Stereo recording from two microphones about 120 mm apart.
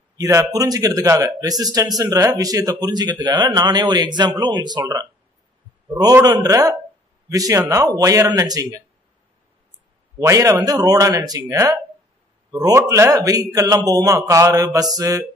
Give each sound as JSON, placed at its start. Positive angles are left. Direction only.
{"t": 0.2, "sound": "a man's voice", "side_deg": -30}
{"t": 6.2, "sound": "a man's voice", "side_deg": -30}
{"t": 10.2, "sound": "a man's voice", "side_deg": -25}